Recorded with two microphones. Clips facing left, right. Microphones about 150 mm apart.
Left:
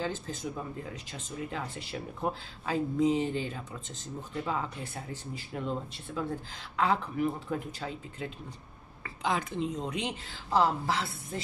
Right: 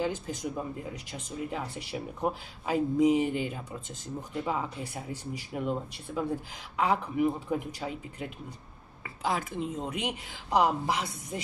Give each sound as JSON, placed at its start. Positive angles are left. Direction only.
{"t": 0.0, "sound": "speech", "side_deg": -15}